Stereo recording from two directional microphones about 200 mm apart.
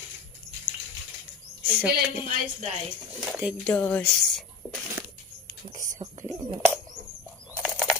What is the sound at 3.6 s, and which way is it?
Speech, 10° left (ahead or behind).